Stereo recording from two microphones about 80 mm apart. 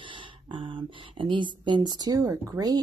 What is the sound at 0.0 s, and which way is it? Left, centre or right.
Speech, right.